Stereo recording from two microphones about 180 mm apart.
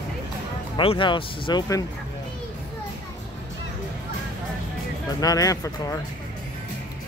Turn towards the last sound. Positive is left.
turn(degrees=20)  # may be behind; listen again after turning